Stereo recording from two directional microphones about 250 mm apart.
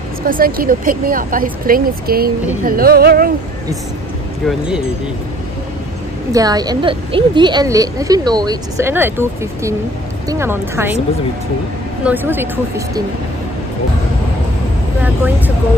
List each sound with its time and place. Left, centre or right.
0.3 s speech: right
4.5 s speech: centre
6.3 s a woman's voice: centre
12.0 s a woman's voice: centre
15.0 s a woman's voice: centre